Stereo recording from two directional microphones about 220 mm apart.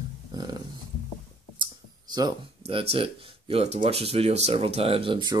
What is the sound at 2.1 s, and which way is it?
Speech, 20° right (ahead or behind).